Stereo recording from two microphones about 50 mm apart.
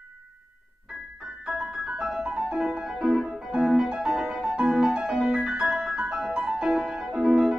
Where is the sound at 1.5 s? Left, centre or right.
Centre.